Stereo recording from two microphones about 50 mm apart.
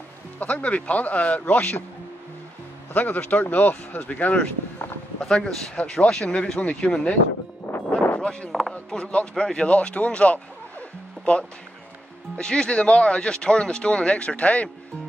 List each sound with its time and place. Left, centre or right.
0.4 s speech: left
2.9 s speech: left
5.2 s speech: centre
7.7 s music: left
8.2 s a sound: centre
8.5 s a sound: centre
8.9 s speech: centre